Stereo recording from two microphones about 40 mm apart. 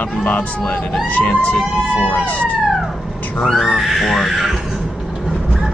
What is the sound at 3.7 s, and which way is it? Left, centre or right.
Speech, centre.